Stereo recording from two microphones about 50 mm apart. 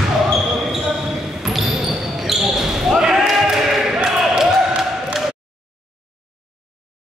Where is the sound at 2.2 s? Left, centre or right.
Centre.